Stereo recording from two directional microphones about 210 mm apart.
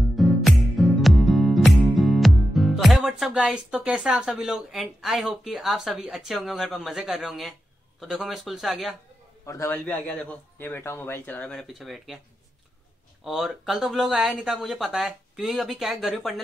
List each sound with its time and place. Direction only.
0.1 s music: centre (ahead or behind)
8.0 s speech: centre (ahead or behind)
9.5 s a man's voice: 10° left (ahead or behind)
13.2 s speech: centre (ahead or behind)